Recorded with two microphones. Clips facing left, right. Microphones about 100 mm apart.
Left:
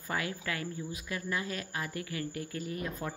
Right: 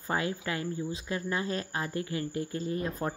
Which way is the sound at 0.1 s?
25° right (ahead or behind).